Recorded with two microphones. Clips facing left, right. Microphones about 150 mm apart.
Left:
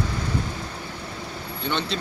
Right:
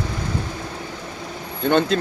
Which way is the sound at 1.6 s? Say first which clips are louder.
Right 10 dB; 45° right (ahead or behind).